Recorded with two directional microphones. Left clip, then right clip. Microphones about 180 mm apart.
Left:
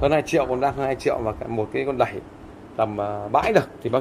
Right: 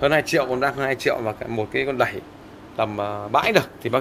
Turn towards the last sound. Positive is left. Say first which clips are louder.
# even
turn(degrees=5)  # may be behind; listen again after turning